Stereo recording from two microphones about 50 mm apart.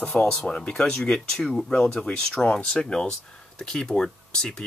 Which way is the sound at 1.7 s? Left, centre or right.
Centre.